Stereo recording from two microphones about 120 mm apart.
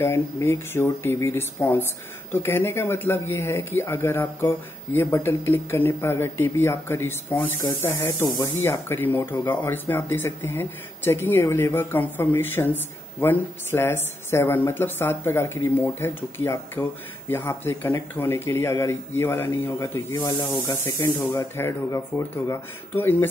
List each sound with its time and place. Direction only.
0.0 s speech: 20° left (ahead or behind)